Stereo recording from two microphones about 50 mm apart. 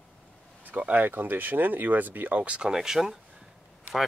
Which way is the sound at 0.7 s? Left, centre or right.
Right.